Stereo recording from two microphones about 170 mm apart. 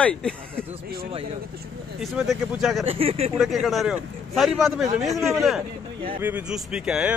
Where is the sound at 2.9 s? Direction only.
35° right (ahead or behind).